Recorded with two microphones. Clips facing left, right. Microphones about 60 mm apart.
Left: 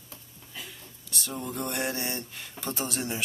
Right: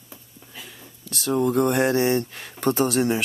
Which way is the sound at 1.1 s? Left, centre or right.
Right.